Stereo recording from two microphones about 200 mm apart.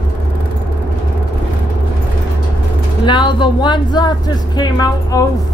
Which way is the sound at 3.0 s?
25° left (ahead or behind).